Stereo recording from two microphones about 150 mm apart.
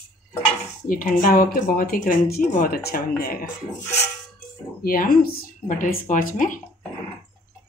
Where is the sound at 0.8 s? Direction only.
65° left (ahead or behind).